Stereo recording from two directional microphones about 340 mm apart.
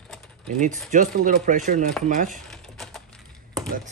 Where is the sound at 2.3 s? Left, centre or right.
Centre.